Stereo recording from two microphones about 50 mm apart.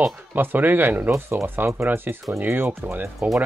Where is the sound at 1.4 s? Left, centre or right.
Right.